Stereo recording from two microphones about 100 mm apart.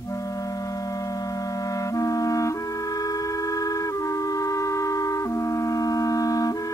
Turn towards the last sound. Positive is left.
turn(degrees=35)  # may be behind; listen again after turning